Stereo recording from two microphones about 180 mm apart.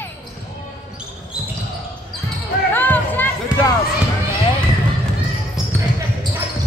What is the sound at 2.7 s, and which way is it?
Music, 10° left (ahead or behind).